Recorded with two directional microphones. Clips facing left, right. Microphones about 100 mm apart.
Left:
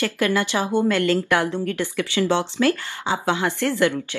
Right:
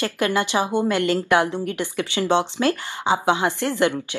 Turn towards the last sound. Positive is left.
turn(degrees=-20)  # may be behind; listen again after turning